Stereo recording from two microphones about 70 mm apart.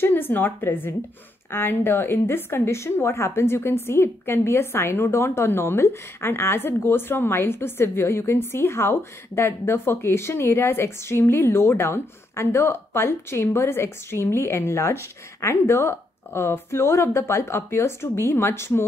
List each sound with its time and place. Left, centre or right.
0.0 s a woman's voice: left